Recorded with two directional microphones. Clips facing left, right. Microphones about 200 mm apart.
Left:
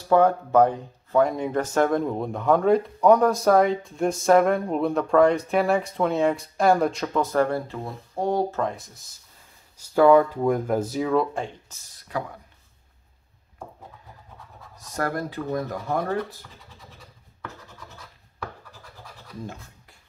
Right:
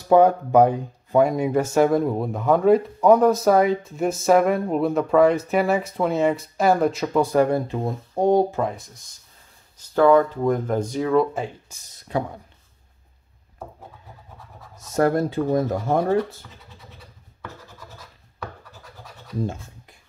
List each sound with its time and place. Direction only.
0.1 s speech: 15° right (ahead or behind)
8.7 s speech: centre (ahead or behind)
11.9 s speech: 25° right (ahead or behind)
14.8 s speech: 25° right (ahead or behind)